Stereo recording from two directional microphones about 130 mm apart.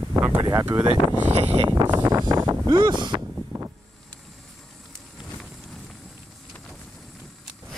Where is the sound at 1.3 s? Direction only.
50° right (ahead or behind).